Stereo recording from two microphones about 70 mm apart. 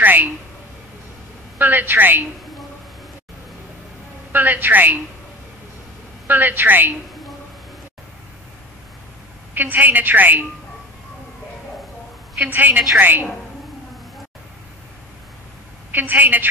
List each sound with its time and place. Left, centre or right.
0.0 s speech: right
1.6 s a woman's voice: right
4.3 s a woman's voice: right
6.2 s a woman's voice: right
9.5 s a woman's voice: right
12.5 s a woman's voice: right
15.9 s a woman's voice: right